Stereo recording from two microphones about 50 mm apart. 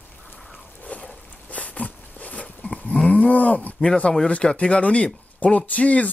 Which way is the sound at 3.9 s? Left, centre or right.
Centre.